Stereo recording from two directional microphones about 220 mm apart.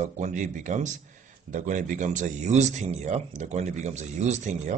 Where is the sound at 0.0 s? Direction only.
35° right (ahead or behind).